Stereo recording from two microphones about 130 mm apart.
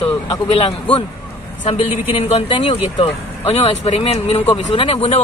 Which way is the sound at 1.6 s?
50° left (ahead or behind).